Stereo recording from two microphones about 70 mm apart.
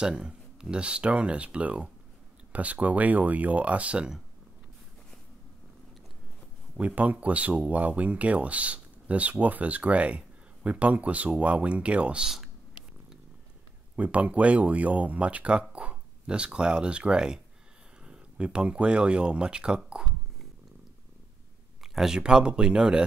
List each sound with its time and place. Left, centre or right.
0.0 s speech: centre
6.8 s speech: right
13.9 s speech: right
21.8 s speech: centre